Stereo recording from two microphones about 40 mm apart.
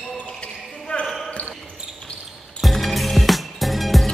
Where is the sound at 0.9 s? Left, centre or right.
Left.